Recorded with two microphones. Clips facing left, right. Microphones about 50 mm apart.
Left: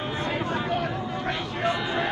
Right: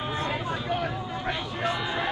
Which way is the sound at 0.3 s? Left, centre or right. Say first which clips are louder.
Left 2 dB; centre.